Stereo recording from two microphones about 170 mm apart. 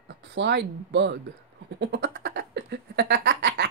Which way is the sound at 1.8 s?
90° right.